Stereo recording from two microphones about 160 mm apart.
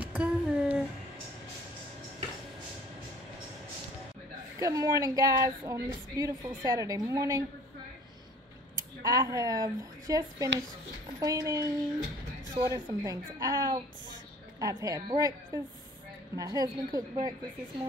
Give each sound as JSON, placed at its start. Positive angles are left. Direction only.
{"t": 0.0, "sound": "a sound", "side_deg": -10}
{"t": 4.6, "sound": "speech", "side_deg": -20}
{"t": 9.0, "sound": "speech", "side_deg": -20}